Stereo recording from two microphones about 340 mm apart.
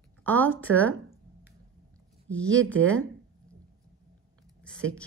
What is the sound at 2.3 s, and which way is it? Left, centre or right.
Speech, centre.